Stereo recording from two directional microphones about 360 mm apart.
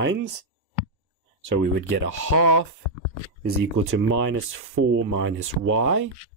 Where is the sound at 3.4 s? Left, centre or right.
Right.